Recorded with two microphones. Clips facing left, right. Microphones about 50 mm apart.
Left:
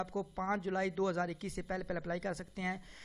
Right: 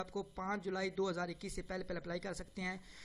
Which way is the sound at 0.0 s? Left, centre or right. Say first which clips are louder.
Left 4 dB; left.